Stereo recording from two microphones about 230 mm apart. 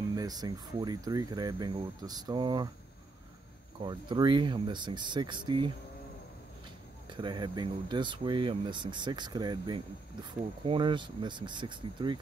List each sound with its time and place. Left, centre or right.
0.1 s speech: centre
3.8 s speech: centre
7.1 s speech: right